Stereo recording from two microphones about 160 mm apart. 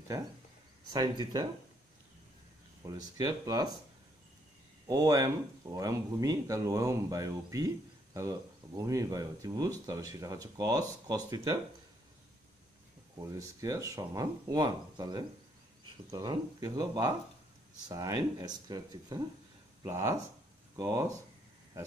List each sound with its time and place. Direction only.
0.8 s speech: 25° right (ahead or behind)
2.9 s speech: 25° right (ahead or behind)
4.8 s speech: 20° right (ahead or behind)
13.3 s speech: 20° right (ahead or behind)